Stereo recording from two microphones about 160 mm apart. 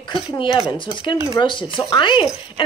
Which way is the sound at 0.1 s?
30° left (ahead or behind).